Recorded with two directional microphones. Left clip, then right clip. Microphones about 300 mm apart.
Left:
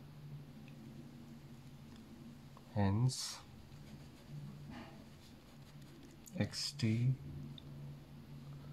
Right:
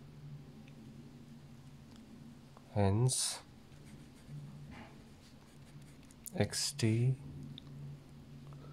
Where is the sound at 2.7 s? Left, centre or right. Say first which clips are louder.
Right 5 dB; right.